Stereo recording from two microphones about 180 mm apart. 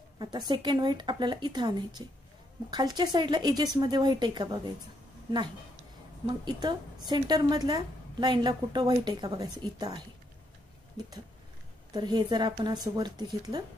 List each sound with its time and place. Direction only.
0.2 s a woman's voice: 25° right (ahead or behind)
6.2 s a woman's voice: 25° right (ahead or behind)
11.9 s a woman's voice: 25° right (ahead or behind)